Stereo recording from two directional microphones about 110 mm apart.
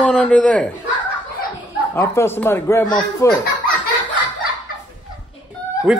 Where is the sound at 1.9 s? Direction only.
20° left (ahead or behind).